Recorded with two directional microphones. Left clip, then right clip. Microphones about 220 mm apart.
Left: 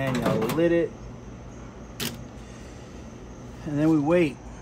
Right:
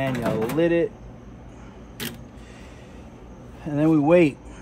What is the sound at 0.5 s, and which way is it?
Speech, 40° right (ahead or behind).